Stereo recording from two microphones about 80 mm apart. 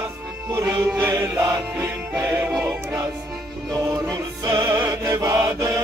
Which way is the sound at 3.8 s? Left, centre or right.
Right.